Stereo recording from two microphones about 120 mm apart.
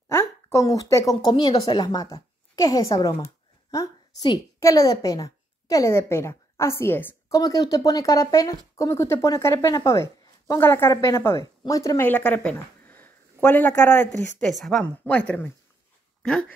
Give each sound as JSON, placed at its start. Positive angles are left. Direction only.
{"t": 0.1, "sound": "a sound", "side_deg": 25}
{"t": 1.2, "sound": "a woman's voice", "side_deg": 35}
{"t": 7.3, "sound": "a woman's voice", "side_deg": 30}
{"t": 12.0, "sound": "speech", "side_deg": 10}
{"t": 14.4, "sound": "speech", "side_deg": 5}